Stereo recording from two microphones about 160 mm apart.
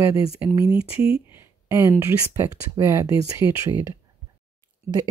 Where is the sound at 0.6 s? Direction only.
35° left (ahead or behind).